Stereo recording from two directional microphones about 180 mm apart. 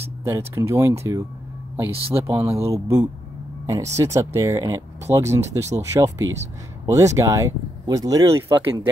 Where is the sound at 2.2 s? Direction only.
15° right (ahead or behind).